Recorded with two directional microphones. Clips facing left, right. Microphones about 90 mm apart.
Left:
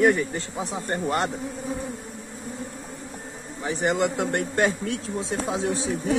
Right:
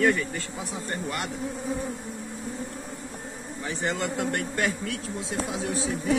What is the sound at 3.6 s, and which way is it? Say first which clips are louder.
Speech: left 6 dB; 20° left (ahead or behind).